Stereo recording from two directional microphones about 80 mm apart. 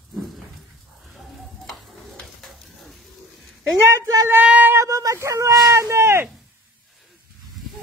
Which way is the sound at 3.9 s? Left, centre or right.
Right.